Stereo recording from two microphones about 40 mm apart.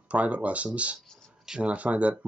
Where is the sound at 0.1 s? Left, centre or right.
Right.